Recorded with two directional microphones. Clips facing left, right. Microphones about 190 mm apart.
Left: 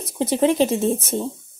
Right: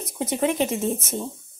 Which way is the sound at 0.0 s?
30° left (ahead or behind).